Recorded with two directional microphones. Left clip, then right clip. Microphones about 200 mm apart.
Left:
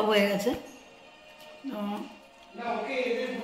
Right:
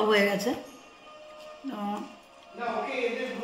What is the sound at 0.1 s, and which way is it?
Speech, 10° right (ahead or behind).